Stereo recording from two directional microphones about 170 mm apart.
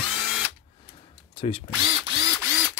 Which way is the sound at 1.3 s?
30° left (ahead or behind).